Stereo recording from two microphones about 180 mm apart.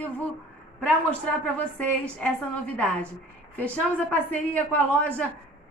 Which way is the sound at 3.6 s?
10° left (ahead or behind).